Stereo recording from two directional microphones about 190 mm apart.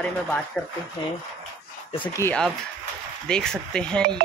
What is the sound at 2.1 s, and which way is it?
Speech, 10° left (ahead or behind).